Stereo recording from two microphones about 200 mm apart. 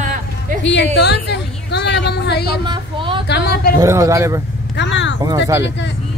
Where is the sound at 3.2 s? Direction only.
55° left (ahead or behind).